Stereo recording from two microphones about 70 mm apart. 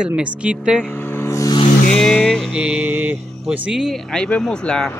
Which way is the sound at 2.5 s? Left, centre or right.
Centre.